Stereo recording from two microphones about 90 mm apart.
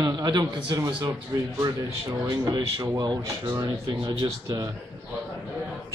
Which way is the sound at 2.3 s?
50° right (ahead or behind).